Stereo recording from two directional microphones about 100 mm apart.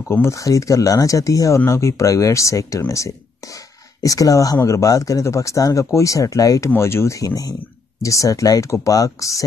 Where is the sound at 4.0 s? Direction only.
35° left (ahead or behind).